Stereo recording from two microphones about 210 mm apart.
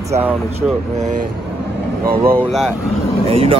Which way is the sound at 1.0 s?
35° right (ahead or behind).